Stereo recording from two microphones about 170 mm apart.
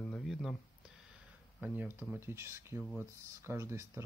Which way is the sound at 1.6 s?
10° right (ahead or behind).